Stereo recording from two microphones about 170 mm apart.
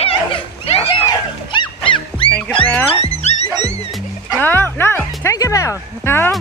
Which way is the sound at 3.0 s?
40° left (ahead or behind).